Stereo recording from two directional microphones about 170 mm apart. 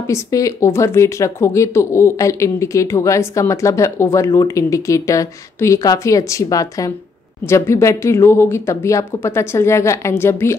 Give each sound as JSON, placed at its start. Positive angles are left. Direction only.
{"t": 0.0, "sound": "speech", "side_deg": 20}